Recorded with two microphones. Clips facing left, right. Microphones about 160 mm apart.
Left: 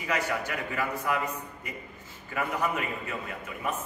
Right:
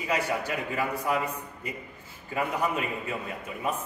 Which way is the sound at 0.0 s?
25° right (ahead or behind).